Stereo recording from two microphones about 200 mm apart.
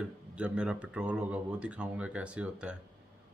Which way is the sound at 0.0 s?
5° right (ahead or behind).